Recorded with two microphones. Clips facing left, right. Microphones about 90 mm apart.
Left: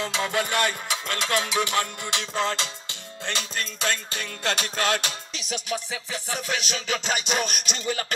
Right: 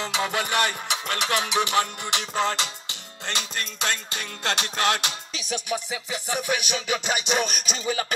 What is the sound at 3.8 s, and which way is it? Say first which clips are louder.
Music: even; 15° right (ahead or behind).